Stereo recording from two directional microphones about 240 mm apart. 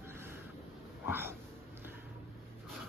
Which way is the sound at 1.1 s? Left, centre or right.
Centre.